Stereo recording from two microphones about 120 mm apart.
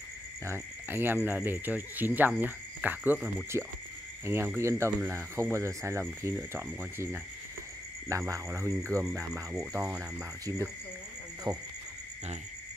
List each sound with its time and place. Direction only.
0.5 s speech: 20° right (ahead or behind)
11.5 s speech: 35° right (ahead or behind)